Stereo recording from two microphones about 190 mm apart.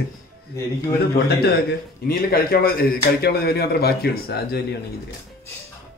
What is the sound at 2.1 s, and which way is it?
A man's voice, 50° left (ahead or behind).